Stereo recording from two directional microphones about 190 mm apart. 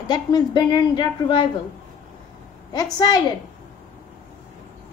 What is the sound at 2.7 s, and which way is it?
Speech, 20° left (ahead or behind).